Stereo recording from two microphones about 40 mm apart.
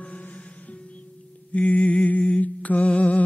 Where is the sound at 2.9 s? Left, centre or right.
Left.